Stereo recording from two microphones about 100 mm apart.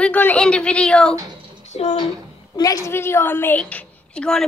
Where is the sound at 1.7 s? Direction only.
85° left.